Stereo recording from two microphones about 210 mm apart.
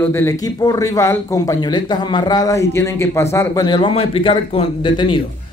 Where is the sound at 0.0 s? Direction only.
10° left (ahead or behind).